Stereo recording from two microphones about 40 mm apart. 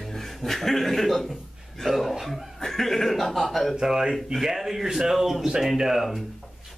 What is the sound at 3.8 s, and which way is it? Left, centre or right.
Speech, centre.